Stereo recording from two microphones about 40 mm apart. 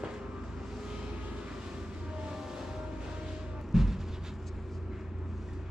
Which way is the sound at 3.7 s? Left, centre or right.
Centre.